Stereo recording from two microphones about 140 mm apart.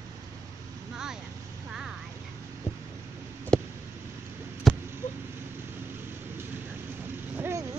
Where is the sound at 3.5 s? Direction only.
5° left (ahead or behind).